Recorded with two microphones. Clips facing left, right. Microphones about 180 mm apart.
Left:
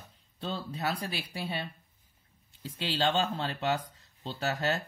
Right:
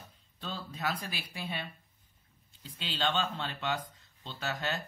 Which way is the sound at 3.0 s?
40° left (ahead or behind).